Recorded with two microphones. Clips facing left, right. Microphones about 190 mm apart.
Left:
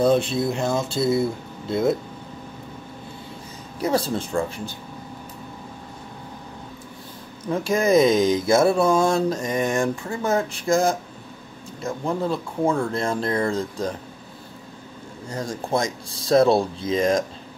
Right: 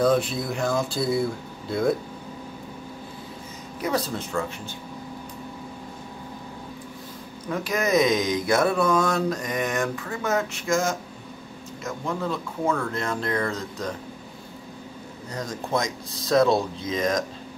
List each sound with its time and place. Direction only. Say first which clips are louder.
0.0 s speech: left 3 dB; 25° left (ahead or behind)
3.8 s speech: left 4 dB; 30° left (ahead or behind)
7.4 s speech: left 5 dB; 25° left (ahead or behind)
15.3 s speech: left 2 dB; 30° left (ahead or behind)